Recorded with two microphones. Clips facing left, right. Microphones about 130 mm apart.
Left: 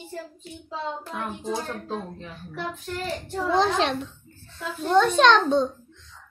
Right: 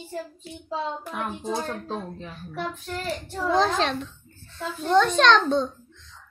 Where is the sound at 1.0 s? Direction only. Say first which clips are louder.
Right 1 dB; 15° right (ahead or behind).